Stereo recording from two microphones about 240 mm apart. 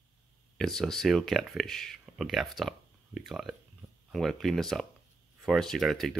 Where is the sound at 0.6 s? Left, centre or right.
Centre.